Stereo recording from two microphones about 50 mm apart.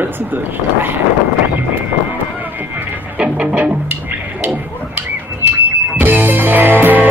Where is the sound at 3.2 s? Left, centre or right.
Centre.